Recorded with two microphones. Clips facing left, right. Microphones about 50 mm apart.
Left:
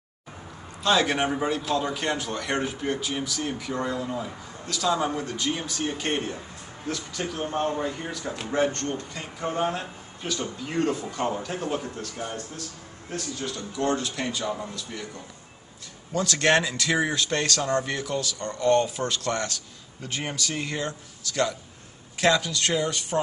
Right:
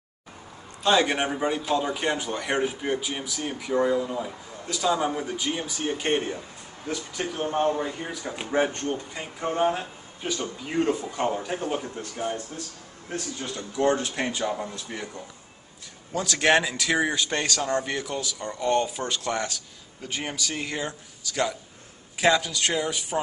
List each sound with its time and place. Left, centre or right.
0.8 s speech: centre
13.1 s speech: right
16.1 s speech: centre